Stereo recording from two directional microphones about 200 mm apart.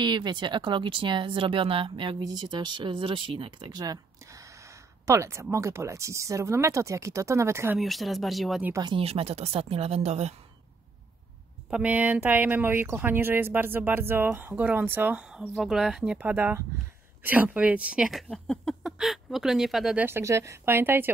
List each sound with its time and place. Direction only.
0.0 s speech: 20° right (ahead or behind)
5.0 s speech: 15° right (ahead or behind)
7.8 s speech: centre (ahead or behind)
8.7 s speech: 25° right (ahead or behind)
11.7 s speech: 10° right (ahead or behind)